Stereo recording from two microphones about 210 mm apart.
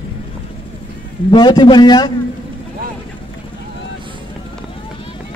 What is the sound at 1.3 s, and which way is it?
Speech, 20° left (ahead or behind).